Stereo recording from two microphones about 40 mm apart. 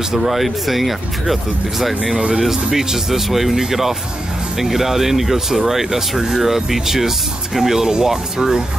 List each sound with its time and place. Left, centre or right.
0.1 s speech: centre